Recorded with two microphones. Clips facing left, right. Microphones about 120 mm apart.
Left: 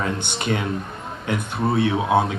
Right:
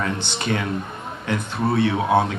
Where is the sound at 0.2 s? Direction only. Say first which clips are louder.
Even; 25° left (ahead or behind).